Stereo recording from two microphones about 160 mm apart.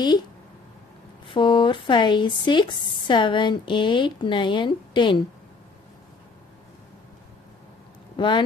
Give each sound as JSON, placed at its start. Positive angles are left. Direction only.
{"t": 1.2, "sound": "speech", "side_deg": 30}
{"t": 8.2, "sound": "speech", "side_deg": 30}